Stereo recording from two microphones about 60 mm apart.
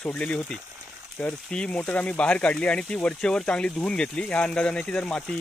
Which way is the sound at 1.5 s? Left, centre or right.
Centre.